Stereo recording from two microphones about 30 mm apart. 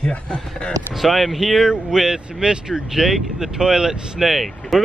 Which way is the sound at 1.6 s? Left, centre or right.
Centre.